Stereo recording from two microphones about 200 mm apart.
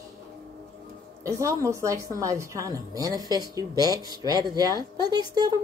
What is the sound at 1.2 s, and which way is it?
A woman's voice, 15° right (ahead or behind).